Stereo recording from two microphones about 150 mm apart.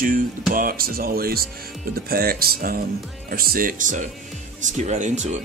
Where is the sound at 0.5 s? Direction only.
75° right (ahead or behind).